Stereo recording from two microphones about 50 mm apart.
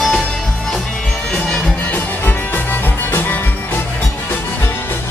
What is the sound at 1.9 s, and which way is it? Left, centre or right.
Music, left.